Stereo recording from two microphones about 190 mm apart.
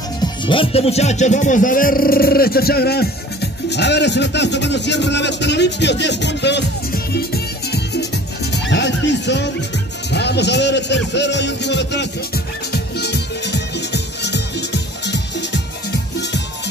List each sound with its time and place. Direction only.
0.2 s a man's voice: 25° left (ahead or behind); by 12.1 s 65° left (ahead or behind)
12.7 s music: 60° left (ahead or behind)